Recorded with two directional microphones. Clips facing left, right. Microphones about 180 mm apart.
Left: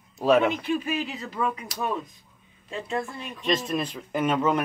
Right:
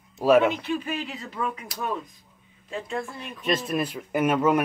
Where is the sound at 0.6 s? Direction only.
10° left (ahead or behind).